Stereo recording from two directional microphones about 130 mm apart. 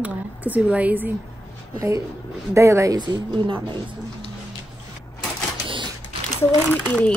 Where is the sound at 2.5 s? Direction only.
20° right (ahead or behind); by 4.2 s 40° right (ahead or behind).